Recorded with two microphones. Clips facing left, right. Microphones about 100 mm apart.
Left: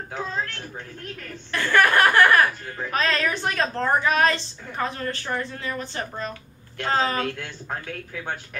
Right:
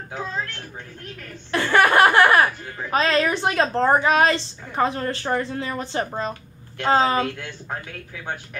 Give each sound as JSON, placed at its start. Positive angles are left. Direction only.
{"t": 1.5, "sound": "a woman's voice", "side_deg": -25}